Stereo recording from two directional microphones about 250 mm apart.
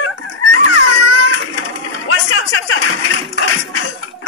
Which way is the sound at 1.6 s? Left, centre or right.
Left.